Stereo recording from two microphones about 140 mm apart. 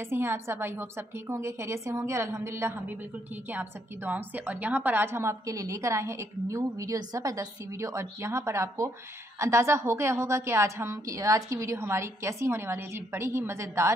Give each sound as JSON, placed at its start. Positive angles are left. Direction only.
{"t": 0.0, "sound": "a woman's voice", "side_deg": -15}